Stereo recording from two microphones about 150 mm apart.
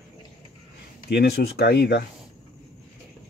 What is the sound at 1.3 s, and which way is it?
Speech, 90° left.